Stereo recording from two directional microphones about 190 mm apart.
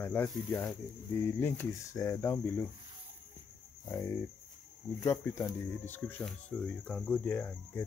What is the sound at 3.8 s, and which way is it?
Speech, 15° left (ahead or behind).